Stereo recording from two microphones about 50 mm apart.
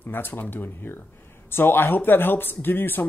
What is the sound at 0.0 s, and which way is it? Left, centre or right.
Speech, left.